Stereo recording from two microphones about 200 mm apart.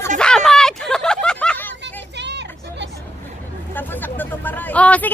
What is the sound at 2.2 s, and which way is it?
Vehicle, 60° right (ahead or behind).